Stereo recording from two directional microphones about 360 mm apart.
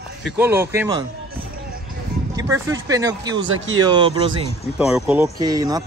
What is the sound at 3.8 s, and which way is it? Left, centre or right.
Speech, centre.